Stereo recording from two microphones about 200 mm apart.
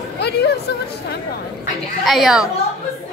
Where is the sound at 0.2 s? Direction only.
55° left (ahead or behind).